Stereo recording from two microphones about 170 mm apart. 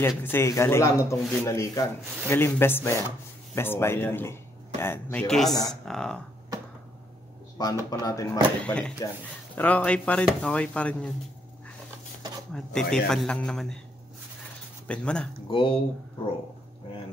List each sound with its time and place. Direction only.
0.2 s a man's voice: 15° left (ahead or behind)
7.5 s speech: 20° left (ahead or behind)
8.5 s speech: 5° left (ahead or behind)
12.5 s a man's voice: 5° left (ahead or behind)
14.9 s a man's voice: 5° left (ahead or behind)
15.5 s speech: 30° left (ahead or behind)